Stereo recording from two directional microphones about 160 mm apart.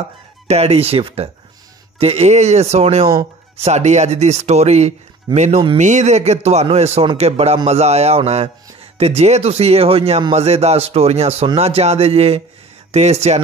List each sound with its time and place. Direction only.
0.5 s speech: 40° right (ahead or behind)